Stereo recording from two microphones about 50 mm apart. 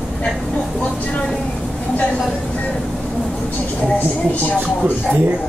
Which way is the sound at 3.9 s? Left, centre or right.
Left.